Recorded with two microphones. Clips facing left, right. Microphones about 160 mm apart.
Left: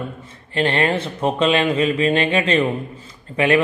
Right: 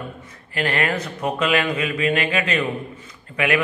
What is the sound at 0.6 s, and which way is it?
A man's voice, 30° left (ahead or behind).